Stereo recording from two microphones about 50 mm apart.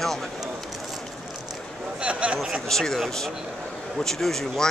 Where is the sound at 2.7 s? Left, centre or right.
Centre.